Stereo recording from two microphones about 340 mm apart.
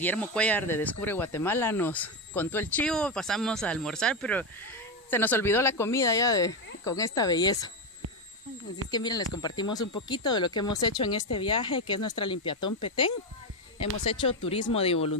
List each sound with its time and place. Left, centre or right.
0.0 s speech: centre
8.9 s speech: centre